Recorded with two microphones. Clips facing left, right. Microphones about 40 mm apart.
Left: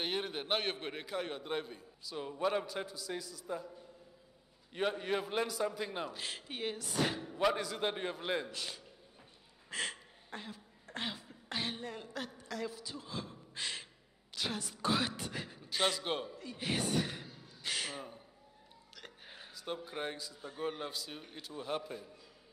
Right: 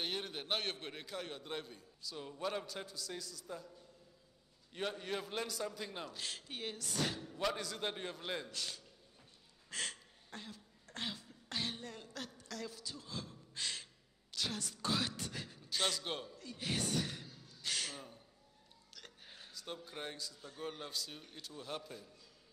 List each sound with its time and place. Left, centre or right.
0.0 s a man's voice: centre
9.7 s a sound: centre
14.3 s a man's voice: centre